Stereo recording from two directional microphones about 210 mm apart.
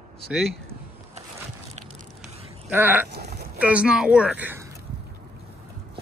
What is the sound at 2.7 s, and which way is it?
Speech, 10° right (ahead or behind).